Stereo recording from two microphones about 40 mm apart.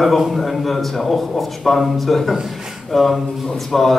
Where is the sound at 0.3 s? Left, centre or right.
Centre.